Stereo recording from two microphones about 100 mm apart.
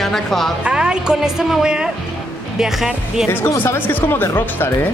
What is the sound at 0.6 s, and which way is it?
Speech, 10° right (ahead or behind).